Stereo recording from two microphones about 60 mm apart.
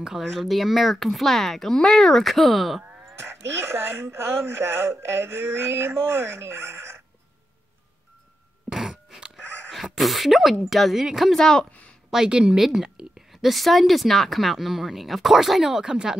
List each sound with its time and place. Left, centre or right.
0.2 s speech: centre
3.2 s speech: right
8.6 s a sound: centre
11.3 s speech: centre
12.1 s a woman's voice: centre